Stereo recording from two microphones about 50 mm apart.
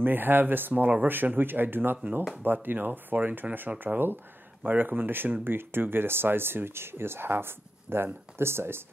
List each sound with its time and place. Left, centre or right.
0.0 s speech: right